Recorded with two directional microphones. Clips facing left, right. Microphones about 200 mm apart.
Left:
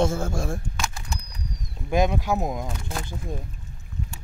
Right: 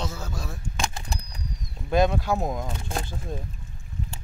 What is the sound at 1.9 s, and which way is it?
Speech, 15° left (ahead or behind).